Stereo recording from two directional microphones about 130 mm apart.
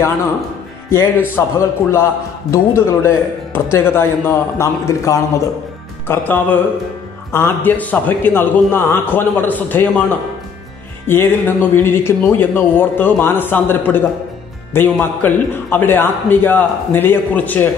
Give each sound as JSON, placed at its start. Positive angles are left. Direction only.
{"t": 1.3, "sound": "a man's voice", "side_deg": 20}